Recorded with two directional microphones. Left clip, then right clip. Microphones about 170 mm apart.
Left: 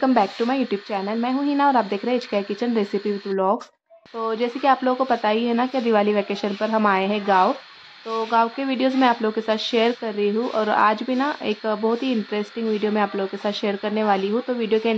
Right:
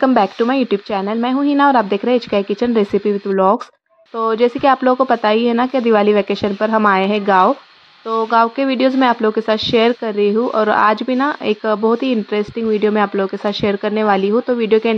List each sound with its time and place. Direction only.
0.0 s speech: 35° right (ahead or behind)